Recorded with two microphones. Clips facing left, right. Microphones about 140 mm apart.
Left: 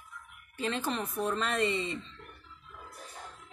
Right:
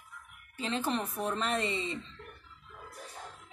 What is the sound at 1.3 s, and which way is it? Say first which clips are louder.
Speech: left 2 dB; 20° right (ahead or behind).